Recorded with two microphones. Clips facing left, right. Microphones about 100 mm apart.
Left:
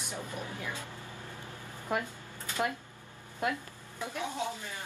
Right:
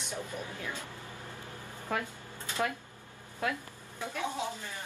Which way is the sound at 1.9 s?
15° left (ahead or behind).